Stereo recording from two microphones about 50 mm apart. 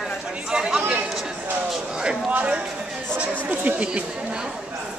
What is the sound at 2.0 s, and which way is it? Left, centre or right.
Speech, centre.